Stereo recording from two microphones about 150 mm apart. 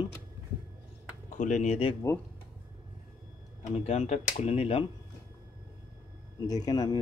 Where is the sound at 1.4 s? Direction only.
55° left (ahead or behind).